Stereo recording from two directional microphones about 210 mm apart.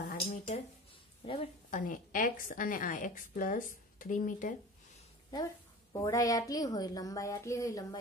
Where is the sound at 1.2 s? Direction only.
25° left (ahead or behind).